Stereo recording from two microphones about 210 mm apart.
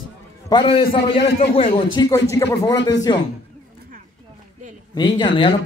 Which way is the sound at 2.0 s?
15° left (ahead or behind).